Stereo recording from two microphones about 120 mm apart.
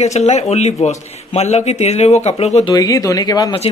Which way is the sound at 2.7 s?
30° left (ahead or behind).